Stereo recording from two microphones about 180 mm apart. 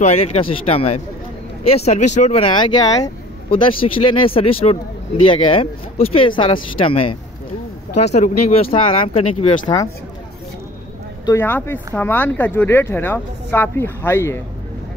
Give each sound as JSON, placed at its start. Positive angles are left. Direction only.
{"t": 0.0, "sound": "speech", "side_deg": 35}
{"t": 11.2, "sound": "speech", "side_deg": 15}